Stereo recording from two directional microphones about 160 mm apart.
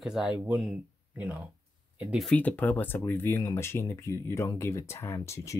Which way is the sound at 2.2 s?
10° left (ahead or behind).